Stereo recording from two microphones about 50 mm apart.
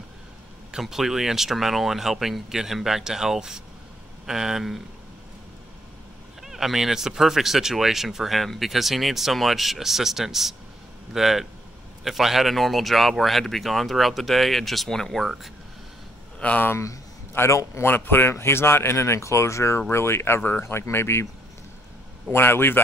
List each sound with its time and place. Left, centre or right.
0.7 s speech: centre
6.4 s speech: centre
15.2 s speech: centre
16.3 s speech: left
17.5 s a man's voice: left
17.8 s speech: left
18.3 s speech: left
20.6 s speech: left
22.3 s speech: left